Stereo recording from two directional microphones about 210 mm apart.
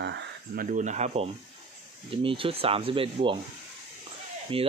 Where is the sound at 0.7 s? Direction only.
35° right (ahead or behind).